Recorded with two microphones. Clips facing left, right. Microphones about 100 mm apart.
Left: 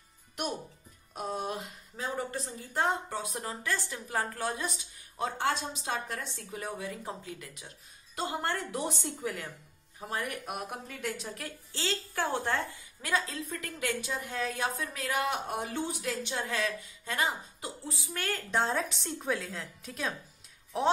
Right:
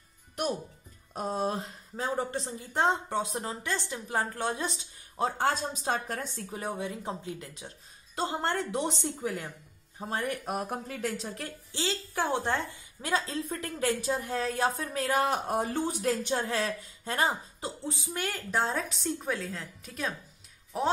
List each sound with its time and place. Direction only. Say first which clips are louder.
1.1 s a woman's voice: right 4 dB; 35° right (ahead or behind)
11.7 s speech: right 2 dB; 20° right (ahead or behind)
18.1 s a woman's voice: left 1 dB; 15° right (ahead or behind)
18.5 s a woman's voice: even; centre (ahead or behind)